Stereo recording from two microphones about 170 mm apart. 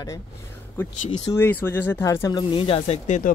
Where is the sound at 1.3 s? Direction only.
10° left (ahead or behind).